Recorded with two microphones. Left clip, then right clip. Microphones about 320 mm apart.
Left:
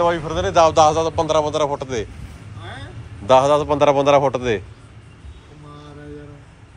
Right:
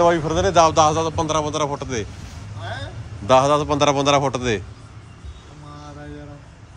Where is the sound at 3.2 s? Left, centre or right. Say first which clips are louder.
Left 2 dB; centre.